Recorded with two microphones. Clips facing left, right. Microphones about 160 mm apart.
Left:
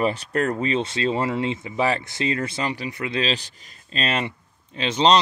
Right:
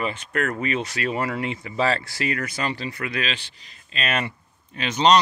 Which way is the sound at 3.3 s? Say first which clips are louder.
Left 6 dB; 40° left (ahead or behind).